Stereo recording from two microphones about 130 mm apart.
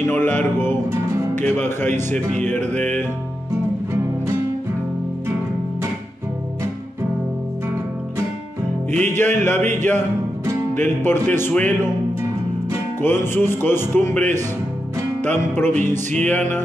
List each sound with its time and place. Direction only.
0.0 s music: 15° left (ahead or behind)
1.3 s speech: 15° left (ahead or behind)
8.9 s speech: 15° left (ahead or behind)
10.8 s speech: 15° left (ahead or behind)
13.0 s speech: 20° left (ahead or behind)